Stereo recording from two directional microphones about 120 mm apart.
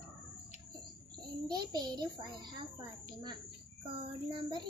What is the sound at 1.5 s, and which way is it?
Child singing, 35° right (ahead or behind).